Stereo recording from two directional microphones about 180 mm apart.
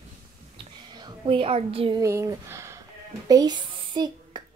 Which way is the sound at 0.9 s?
25° right (ahead or behind).